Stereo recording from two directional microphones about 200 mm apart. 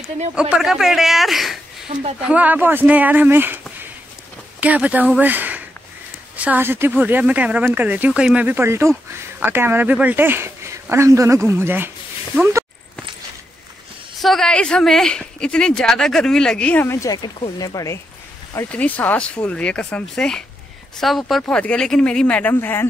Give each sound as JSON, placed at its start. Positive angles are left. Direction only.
{"t": 0.4, "sound": "speech", "side_deg": -5}
{"t": 14.2, "sound": "speech", "side_deg": 0}